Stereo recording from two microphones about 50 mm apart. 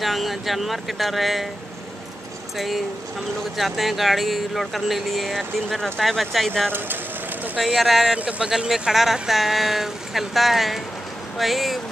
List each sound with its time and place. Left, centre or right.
0.0 s speech: centre
2.5 s speech: centre
7.6 s speech: centre
8.2 s speech: right
8.5 s speech: centre